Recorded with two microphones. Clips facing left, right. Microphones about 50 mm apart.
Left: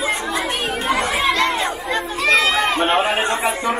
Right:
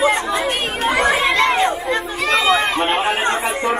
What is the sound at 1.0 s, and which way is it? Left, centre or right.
Crowd, right.